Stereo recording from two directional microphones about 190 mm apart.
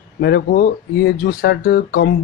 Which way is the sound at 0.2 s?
55° left (ahead or behind).